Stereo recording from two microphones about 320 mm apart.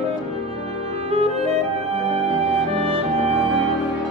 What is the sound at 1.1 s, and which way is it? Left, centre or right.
Clarinet, centre.